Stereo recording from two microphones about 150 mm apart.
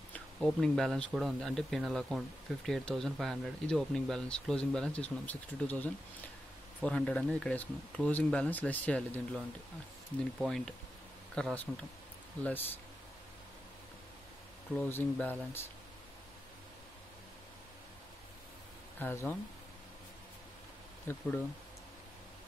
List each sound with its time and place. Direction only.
0.1 s speech: 5° left (ahead or behind)
10.4 s speech: 5° left (ahead or behind)
14.8 s speech: 10° left (ahead or behind)
18.9 s speech: 15° left (ahead or behind)
21.1 s speech: 15° left (ahead or behind)